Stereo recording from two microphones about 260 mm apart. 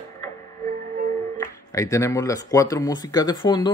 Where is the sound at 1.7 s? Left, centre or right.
Centre.